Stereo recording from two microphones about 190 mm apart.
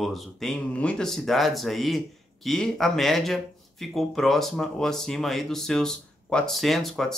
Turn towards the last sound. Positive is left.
turn(degrees=0)  # may be behind; listen again after turning